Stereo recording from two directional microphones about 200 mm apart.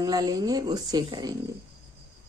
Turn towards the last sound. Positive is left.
turn(degrees=-20)  # may be behind; listen again after turning